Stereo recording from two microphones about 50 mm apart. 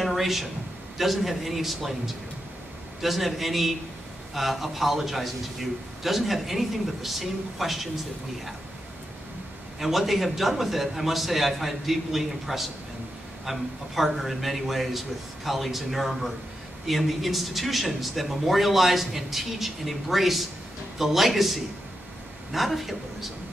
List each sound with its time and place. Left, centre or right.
0.0 s a sound: centre
0.9 s a man's voice: centre
9.8 s a man's voice: centre